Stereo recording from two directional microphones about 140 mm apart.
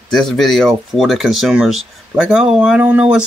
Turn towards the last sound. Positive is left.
turn(degrees=-5)  # may be behind; listen again after turning